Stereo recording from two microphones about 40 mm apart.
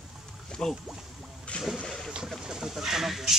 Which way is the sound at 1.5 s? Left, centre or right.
Left.